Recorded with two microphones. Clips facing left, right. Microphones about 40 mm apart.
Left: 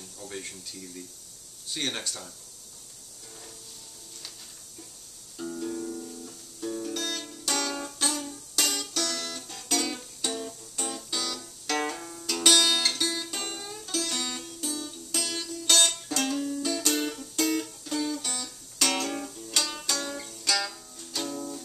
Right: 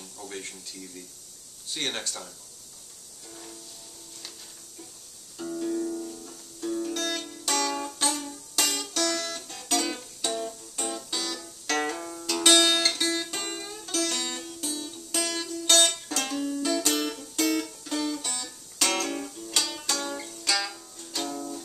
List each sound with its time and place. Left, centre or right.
0.2 s speech: centre
5.4 s music: centre
12.5 s music: right
12.8 s music: centre